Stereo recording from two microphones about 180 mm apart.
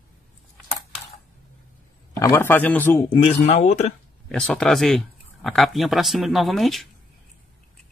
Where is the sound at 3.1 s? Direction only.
30° left (ahead or behind).